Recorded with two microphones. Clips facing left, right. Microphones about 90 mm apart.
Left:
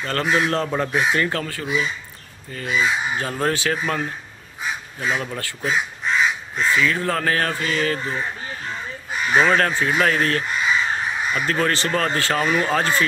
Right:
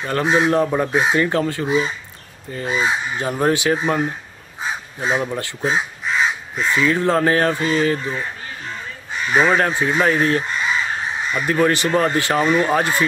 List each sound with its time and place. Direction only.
0.0 s speech: 20° right (ahead or behind)
3.2 s speech: 20° right (ahead or behind)
6.0 s crow: centre (ahead or behind)
6.8 s speech: 25° right (ahead or behind)
9.3 s speech: 10° right (ahead or behind)